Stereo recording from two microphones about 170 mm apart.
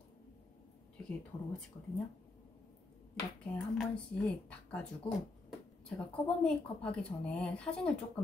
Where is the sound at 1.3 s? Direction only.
20° left (ahead or behind).